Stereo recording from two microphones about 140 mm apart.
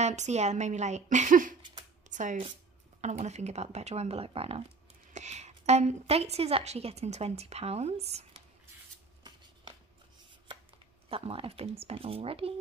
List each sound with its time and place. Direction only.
0.0 s speech: 55° right (ahead or behind); by 1.6 s 70° right (ahead or behind)
2.0 s a sound: 60° right (ahead or behind)
3.0 s a woman's voice: 55° right (ahead or behind)
5.1 s a woman's voice: 55° right (ahead or behind)
11.1 s a woman's voice: 40° right (ahead or behind)